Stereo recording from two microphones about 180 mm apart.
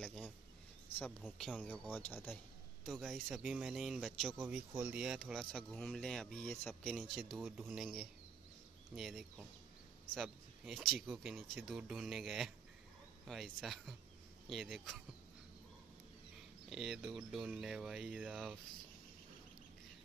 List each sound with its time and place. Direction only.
0.0 s a sound: 5° left (ahead or behind)
1.2 s speech: 5° left (ahead or behind)
2.8 s speech: centre (ahead or behind)
16.6 s speech: centre (ahead or behind)